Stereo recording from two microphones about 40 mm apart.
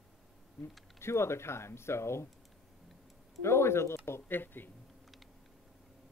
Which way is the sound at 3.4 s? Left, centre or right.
Left.